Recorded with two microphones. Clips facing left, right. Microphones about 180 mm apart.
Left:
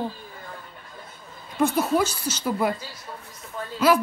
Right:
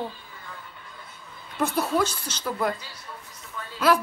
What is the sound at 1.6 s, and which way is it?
Speech, centre (ahead or behind).